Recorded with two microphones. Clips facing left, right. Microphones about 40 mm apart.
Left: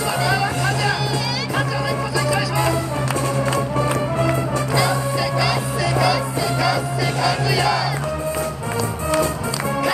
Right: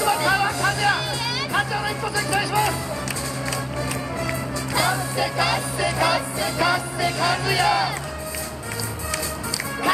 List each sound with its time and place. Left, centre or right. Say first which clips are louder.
0.2 s music: left 1 dB; centre
4.7 s music: left 1 dB; centre